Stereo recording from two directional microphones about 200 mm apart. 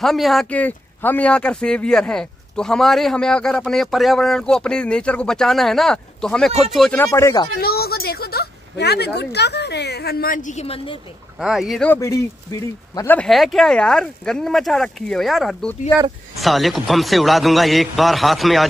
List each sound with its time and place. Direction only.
0.0 s speech: centre (ahead or behind)
7.1 s speech: 15° left (ahead or behind)
7.6 s a woman's voice: 50° left (ahead or behind); by 11.0 s 30° left (ahead or behind)
11.3 s speech: centre (ahead or behind)
11.9 s speech: 15° left (ahead or behind)